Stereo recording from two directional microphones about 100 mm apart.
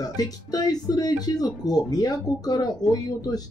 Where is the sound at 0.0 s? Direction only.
40° left (ahead or behind).